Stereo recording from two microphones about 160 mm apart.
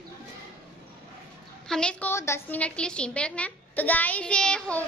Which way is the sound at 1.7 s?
5° left (ahead or behind).